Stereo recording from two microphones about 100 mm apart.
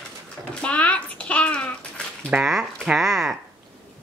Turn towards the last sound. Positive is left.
turn(degrees=-5)  # may be behind; listen again after turning